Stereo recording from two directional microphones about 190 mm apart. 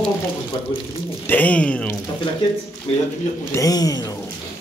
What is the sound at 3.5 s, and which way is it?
Speech, 20° left (ahead or behind).